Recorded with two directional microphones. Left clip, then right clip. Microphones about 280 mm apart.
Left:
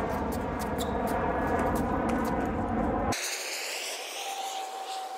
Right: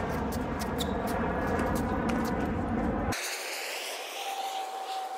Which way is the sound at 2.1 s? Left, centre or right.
Left.